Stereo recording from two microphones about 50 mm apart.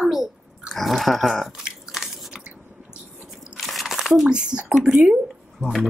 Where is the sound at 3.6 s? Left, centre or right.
Centre.